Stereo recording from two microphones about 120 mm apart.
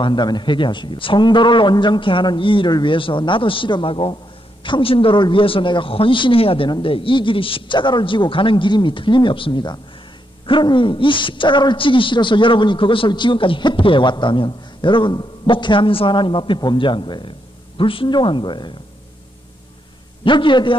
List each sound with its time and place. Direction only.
0.0 s speech: 40° left (ahead or behind)
20.2 s speech: 40° left (ahead or behind)